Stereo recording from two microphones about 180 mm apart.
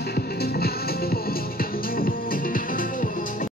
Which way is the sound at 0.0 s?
60° left (ahead or behind).